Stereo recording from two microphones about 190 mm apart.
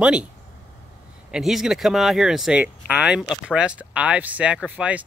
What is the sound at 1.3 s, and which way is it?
Speech, centre (ahead or behind).